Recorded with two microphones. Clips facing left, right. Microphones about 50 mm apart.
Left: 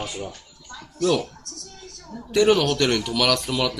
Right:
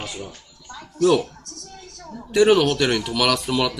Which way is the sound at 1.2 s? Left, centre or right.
Right.